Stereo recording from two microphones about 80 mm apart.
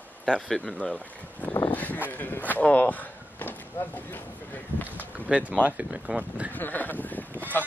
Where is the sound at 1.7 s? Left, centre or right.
Left.